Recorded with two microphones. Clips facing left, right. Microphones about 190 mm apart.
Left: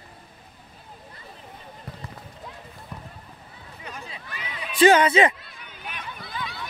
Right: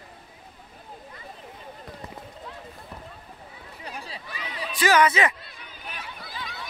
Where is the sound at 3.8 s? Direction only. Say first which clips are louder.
Right 1 dB; 35° right (ahead or behind).